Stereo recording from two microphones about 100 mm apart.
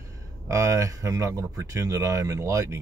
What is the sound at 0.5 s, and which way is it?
Speech, 30° right (ahead or behind).